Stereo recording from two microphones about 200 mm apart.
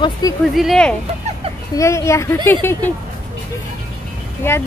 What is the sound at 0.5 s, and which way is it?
Speech, centre (ahead or behind).